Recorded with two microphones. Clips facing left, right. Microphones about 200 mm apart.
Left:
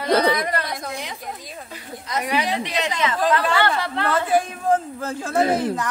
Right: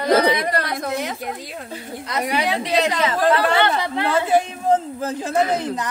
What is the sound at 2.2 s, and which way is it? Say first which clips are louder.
Speech: right 1 dB; 35° right (ahead or behind).